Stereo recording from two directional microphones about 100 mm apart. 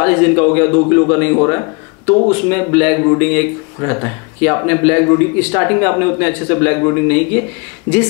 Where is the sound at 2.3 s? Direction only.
15° left (ahead or behind).